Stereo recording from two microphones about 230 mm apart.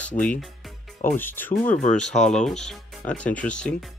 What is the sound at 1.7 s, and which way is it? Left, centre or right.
Speech, left.